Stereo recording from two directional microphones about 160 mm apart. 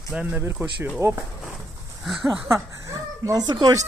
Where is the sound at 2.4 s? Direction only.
20° right (ahead or behind).